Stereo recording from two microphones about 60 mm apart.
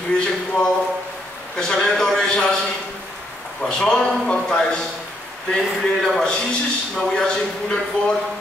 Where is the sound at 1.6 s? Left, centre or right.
Centre.